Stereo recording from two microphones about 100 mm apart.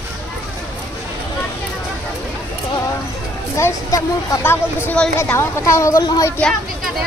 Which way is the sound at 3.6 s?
30° left (ahead or behind).